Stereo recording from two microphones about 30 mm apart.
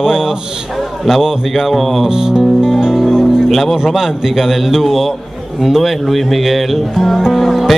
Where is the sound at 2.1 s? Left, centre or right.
Right.